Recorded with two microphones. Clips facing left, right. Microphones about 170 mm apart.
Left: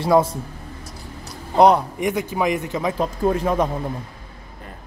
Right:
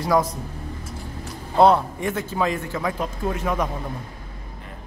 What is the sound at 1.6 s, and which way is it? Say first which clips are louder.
Speech: left 2 dB; 15° left (ahead or behind).